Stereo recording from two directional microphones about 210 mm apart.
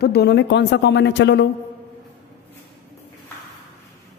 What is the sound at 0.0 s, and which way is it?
Speech, 50° left (ahead or behind).